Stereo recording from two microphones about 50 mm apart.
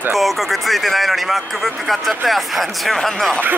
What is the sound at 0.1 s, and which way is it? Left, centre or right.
Speech, centre.